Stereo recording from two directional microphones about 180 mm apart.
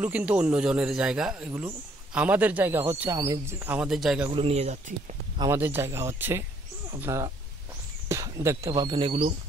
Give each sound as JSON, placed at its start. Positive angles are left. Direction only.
{"t": 0.0, "sound": "a man's voice", "side_deg": -10}
{"t": 4.4, "sound": "speech", "side_deg": -35}
{"t": 5.4, "sound": "a man's voice", "side_deg": -10}